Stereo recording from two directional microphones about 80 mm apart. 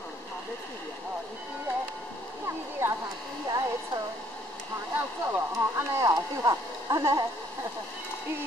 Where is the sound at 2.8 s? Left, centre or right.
Right.